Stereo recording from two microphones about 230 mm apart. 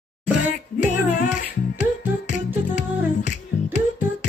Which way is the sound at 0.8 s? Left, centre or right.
Left.